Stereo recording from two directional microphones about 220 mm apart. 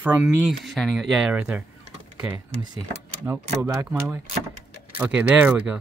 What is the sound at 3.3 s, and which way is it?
Speech, 15° right (ahead or behind).